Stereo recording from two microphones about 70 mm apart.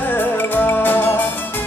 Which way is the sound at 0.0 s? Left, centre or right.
Left.